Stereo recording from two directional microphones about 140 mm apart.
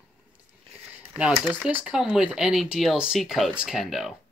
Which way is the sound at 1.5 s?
10° right (ahead or behind).